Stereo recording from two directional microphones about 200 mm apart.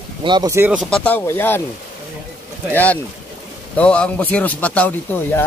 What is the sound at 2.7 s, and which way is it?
A man's voice, 10° left (ahead or behind).